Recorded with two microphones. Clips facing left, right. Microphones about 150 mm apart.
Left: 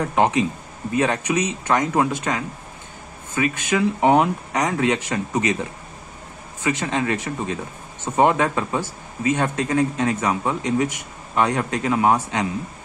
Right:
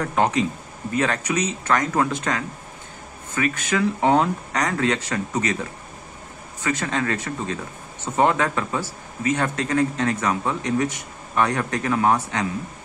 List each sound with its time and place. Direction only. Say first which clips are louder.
0.0 s a man's voice: left 2 dB; 15° left (ahead or behind)